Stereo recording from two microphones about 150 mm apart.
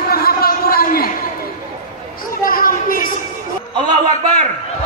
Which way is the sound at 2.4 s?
70° left (ahead or behind).